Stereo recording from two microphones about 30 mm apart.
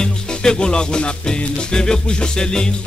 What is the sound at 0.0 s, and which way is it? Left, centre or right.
Music, left.